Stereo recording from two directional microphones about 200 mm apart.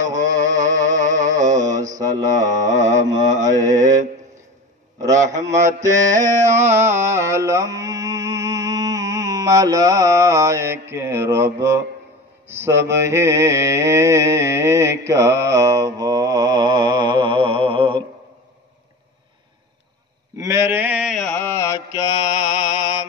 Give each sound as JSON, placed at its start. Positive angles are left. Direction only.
{"t": 0.0, "sound": "mantra", "side_deg": -40}
{"t": 0.9, "sound": "a sound", "side_deg": -40}
{"t": 1.5, "sound": "mantra", "side_deg": -15}
{"t": 2.7, "sound": "mantra", "side_deg": -35}
{"t": 3.3, "sound": "mantra", "side_deg": -15}
{"t": 5.0, "sound": "a sound", "side_deg": -15}
{"t": 5.7, "sound": "mantra", "side_deg": -15}
{"t": 6.7, "sound": "music", "side_deg": -15}
{"t": 12.4, "sound": "mantra", "side_deg": -15}
{"t": 20.3, "sound": "mantra", "side_deg": -15}